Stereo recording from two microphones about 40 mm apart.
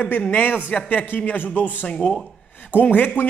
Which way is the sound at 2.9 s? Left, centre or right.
Left.